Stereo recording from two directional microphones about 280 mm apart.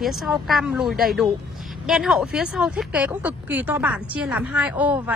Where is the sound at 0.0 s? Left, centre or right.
Centre.